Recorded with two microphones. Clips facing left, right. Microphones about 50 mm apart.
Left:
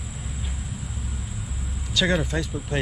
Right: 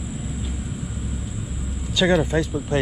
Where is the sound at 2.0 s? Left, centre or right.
Centre.